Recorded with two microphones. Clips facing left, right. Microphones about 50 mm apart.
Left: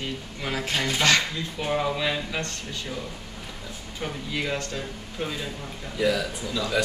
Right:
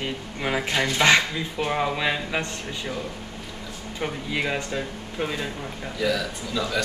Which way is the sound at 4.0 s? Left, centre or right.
Centre.